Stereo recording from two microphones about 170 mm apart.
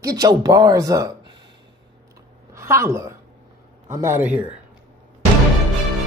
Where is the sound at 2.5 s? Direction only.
15° right (ahead or behind).